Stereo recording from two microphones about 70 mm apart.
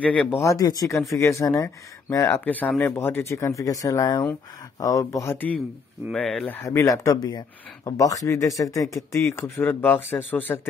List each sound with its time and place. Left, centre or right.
0.0 s speech: centre
0.4 s speech: left
2.4 s speech: left
3.3 s speech: left
4.7 s speech: left
6.1 s speech: centre
6.6 s speech: left
7.2 s speech: left
7.8 s speech: left
8.9 s speech: left